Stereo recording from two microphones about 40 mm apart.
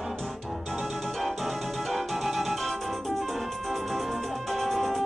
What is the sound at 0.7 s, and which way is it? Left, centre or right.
Music, centre.